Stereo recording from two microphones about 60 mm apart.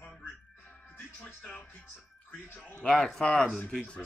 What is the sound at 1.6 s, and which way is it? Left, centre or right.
Speech, left.